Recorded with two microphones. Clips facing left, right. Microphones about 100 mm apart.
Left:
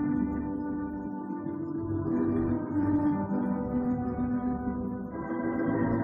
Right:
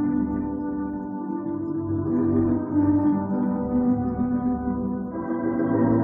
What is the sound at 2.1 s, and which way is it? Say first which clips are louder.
Music: right 7 dB; centre (ahead or behind).